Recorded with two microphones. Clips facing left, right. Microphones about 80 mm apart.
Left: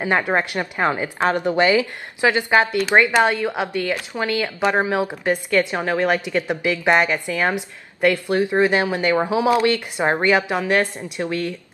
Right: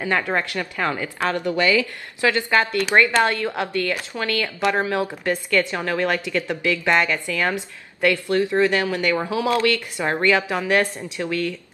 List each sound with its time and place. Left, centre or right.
0.0 s a woman's voice: left